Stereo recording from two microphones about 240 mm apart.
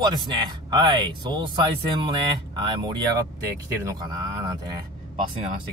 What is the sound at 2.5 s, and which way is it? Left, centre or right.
Speech, centre.